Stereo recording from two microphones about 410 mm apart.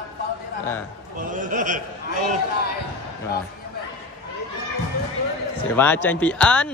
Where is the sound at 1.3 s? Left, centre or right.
Centre.